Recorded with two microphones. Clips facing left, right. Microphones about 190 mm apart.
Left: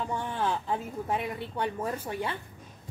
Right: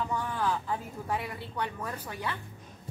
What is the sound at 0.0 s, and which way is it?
A woman's voice, 25° left (ahead or behind).